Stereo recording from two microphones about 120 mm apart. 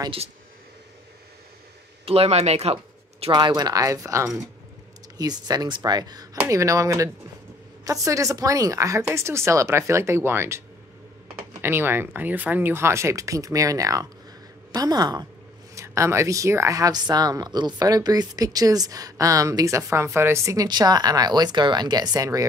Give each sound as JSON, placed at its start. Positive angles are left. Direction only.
{"t": 2.0, "sound": "speech", "side_deg": -60}
{"t": 3.3, "sound": "a woman's voice", "side_deg": -40}
{"t": 11.6, "sound": "a woman's voice", "side_deg": -20}